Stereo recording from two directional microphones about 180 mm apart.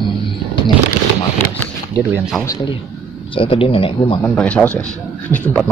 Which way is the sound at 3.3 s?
30° left (ahead or behind).